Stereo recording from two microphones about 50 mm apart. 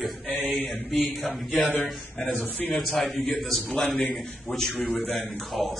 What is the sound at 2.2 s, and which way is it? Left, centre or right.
Speech, left.